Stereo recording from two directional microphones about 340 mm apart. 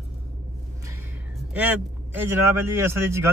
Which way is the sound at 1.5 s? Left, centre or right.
Centre.